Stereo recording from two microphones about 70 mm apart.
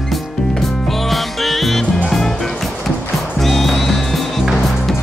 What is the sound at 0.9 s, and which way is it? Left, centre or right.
Music, centre.